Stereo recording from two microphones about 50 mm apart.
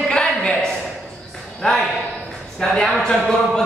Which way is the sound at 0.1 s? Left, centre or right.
Centre.